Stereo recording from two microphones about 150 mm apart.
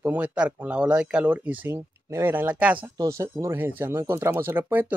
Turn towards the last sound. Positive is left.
turn(degrees=-15)  # may be behind; listen again after turning